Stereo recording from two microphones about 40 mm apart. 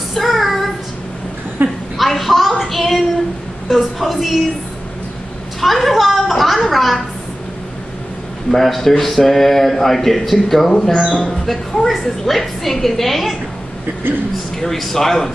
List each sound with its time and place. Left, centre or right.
0.1 s child singing: centre
1.6 s a woman's voice: right
2.0 s a woman's voice: centre
2.6 s a sound: centre
3.7 s a man's voice: centre
5.6 s a woman's voice: centre
8.5 s a man's voice: centre
14.6 s a man's voice: centre